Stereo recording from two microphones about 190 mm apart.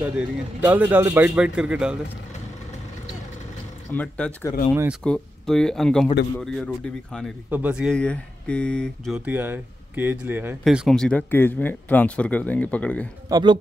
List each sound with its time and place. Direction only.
0.2 s a man's voice: 10° right (ahead or behind)
3.9 s a man's voice: 10° left (ahead or behind)
7.5 s a man's voice: 5° right (ahead or behind)
9.2 s speech: 10° right (ahead or behind); by 13.1 s 5° left (ahead or behind)
13.3 s a man's voice: 25° right (ahead or behind)